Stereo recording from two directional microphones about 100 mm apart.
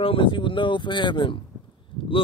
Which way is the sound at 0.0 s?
60° left (ahead or behind).